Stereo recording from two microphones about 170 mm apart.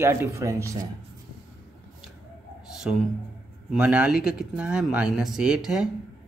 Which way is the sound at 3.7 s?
5° right (ahead or behind).